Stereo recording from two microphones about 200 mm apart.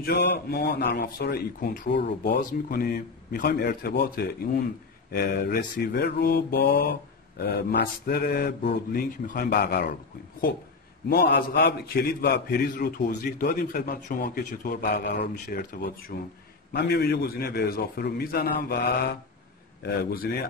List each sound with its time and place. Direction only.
0.0 s mantra: 50° left (ahead or behind)
11.1 s mantra: 50° left (ahead or behind)